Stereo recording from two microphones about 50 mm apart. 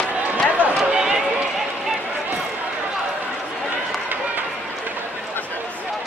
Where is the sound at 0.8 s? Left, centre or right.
Centre.